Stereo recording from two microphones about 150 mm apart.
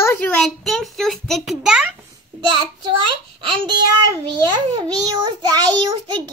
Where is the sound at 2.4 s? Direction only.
30° right (ahead or behind).